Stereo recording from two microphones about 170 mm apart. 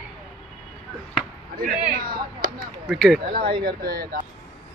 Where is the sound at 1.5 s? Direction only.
60° right (ahead or behind).